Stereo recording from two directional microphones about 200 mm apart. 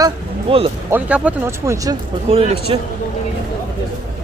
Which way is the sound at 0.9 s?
10° right (ahead or behind).